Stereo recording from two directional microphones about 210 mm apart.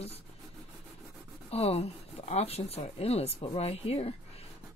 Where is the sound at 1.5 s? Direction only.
30° left (ahead or behind).